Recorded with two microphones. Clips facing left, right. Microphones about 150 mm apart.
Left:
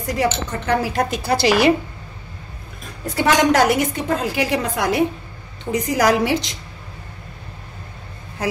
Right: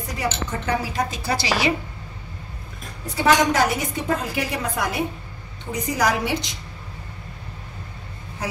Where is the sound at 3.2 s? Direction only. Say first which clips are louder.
Left 3 dB; 80° left.